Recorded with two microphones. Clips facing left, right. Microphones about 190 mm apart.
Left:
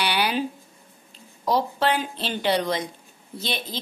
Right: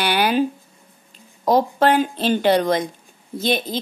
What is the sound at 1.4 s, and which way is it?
Speech, 50° right (ahead or behind).